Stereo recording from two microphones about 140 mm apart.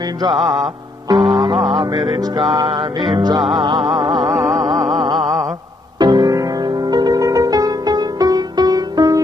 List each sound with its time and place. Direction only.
0.3 s music: centre (ahead or behind)
2.5 s music: 30° right (ahead or behind)
3.8 s music: centre (ahead or behind)
5.9 s music: 30° right (ahead or behind)